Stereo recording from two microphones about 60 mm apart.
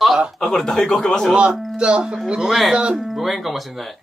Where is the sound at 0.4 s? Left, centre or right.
Centre.